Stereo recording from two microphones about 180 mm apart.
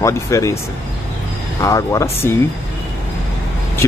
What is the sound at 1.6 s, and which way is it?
Speech, 15° left (ahead or behind).